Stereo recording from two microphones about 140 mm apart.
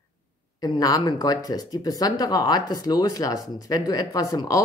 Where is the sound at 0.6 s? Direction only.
25° left (ahead or behind).